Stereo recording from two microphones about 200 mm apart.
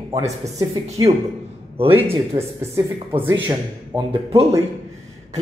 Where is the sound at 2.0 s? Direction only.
15° right (ahead or behind).